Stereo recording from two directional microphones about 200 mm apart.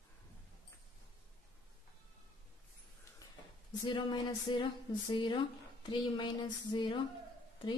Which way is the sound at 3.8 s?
25° left (ahead or behind).